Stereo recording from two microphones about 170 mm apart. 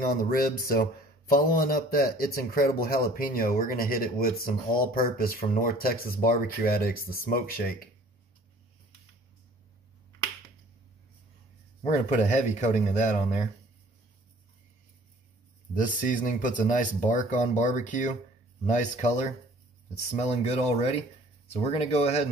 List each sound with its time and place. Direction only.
0.0 s a man's voice: 60° left (ahead or behind)
11.8 s speech: 45° left (ahead or behind)
15.7 s speech: 50° left (ahead or behind)